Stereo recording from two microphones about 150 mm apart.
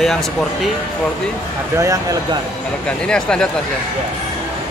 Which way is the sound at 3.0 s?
5° left (ahead or behind).